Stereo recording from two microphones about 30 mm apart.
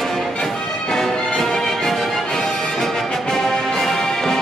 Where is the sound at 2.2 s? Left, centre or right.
Left.